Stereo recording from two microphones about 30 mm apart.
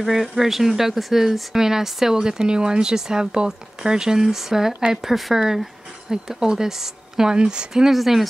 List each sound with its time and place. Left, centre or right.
0.0 s a woman's voice: centre
7.3 s a woman's voice: right
7.7 s speech: centre